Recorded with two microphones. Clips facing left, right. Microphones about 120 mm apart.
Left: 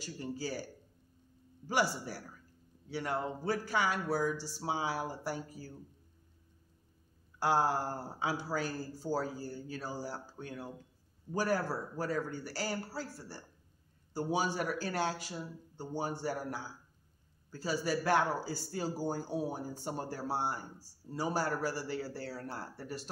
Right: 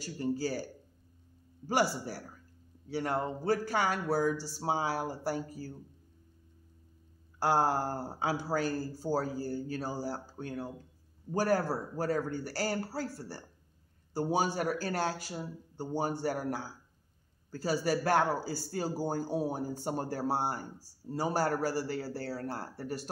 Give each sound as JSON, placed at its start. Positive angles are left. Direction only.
{"t": 0.0, "sound": "speech", "side_deg": -45}
{"t": 2.9, "sound": "a man's voice", "side_deg": -40}
{"t": 7.3, "sound": "a man's voice", "side_deg": -40}